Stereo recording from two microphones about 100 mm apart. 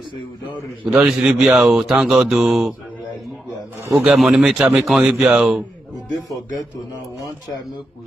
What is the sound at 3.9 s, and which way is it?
A man's voice, centre (ahead or behind).